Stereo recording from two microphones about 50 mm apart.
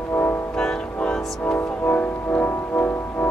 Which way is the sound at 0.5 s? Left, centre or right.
Centre.